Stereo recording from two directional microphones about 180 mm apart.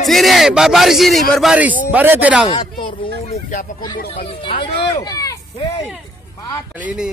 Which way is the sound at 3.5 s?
50° left (ahead or behind).